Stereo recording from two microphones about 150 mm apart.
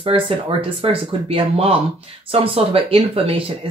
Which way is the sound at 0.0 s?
40° right (ahead or behind).